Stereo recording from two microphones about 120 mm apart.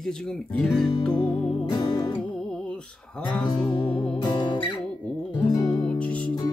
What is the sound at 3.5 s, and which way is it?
Music, 45° left (ahead or behind).